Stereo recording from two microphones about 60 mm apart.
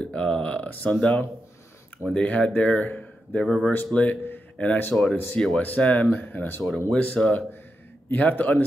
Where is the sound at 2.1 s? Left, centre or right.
Centre.